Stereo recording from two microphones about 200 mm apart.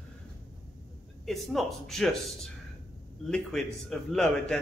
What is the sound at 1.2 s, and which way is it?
A man's voice, centre (ahead or behind).